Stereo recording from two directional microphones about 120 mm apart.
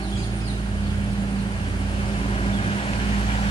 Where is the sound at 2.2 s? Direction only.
55° left (ahead or behind).